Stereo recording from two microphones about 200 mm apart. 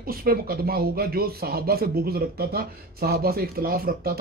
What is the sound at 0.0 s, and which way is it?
Speech, 45° right (ahead or behind).